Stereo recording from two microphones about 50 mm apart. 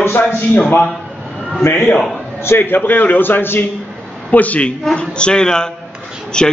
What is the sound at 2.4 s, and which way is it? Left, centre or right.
A man's voice, left.